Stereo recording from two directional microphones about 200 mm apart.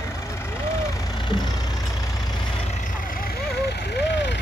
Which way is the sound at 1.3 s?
20° left (ahead or behind).